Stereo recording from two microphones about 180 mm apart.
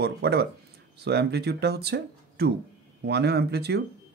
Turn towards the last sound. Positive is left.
turn(degrees=-65)  # may be behind; listen again after turning